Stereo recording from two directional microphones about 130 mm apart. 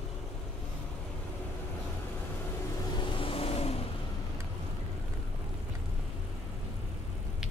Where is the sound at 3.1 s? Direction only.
45° left (ahead or behind).